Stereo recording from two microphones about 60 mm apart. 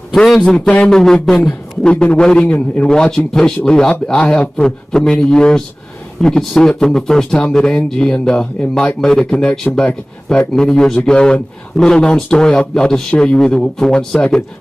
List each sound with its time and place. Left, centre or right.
0.4 s speech: centre
0.8 s speech: centre